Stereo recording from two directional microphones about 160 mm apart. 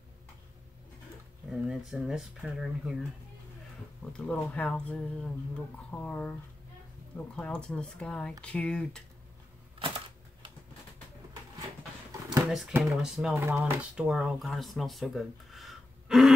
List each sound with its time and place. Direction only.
1.5 s speech: 5° right (ahead or behind)
4.1 s speech: 5° left (ahead or behind)
9.8 s typewriter: 30° right (ahead or behind)
12.3 s a sound: 5° right (ahead or behind)
12.7 s speech: 5° right (ahead or behind)